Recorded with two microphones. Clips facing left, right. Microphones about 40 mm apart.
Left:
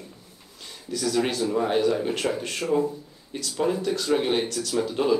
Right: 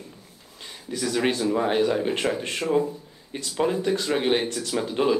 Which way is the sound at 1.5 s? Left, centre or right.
Right.